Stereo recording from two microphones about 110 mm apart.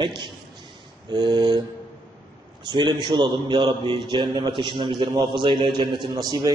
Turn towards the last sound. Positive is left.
turn(degrees=-40)  # may be behind; listen again after turning